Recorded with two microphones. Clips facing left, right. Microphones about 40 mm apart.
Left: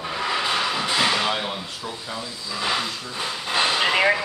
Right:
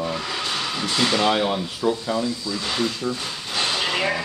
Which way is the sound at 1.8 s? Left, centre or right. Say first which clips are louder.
Right 10 dB; centre.